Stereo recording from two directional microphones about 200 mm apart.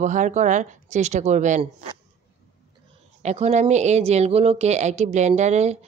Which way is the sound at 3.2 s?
35° right (ahead or behind).